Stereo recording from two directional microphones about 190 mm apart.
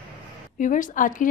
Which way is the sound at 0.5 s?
45° left (ahead or behind).